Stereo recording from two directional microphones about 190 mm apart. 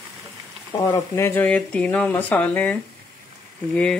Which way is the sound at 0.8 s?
15° left (ahead or behind).